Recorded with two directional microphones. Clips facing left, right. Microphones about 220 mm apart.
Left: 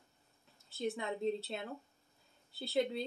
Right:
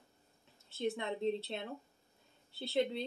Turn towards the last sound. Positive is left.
turn(degrees=0)  # may be behind; listen again after turning